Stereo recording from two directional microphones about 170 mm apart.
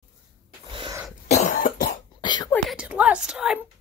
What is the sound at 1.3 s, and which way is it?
Cough, 45° left (ahead or behind).